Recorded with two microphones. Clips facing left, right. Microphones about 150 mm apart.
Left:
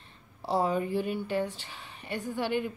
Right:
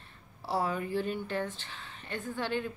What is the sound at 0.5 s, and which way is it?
Speech, 20° left (ahead or behind).